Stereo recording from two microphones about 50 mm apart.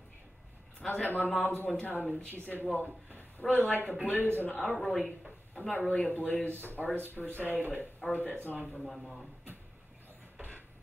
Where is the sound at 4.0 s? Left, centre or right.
Right.